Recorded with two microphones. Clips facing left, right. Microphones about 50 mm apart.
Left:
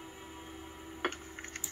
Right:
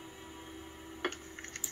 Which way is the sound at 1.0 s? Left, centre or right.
Centre.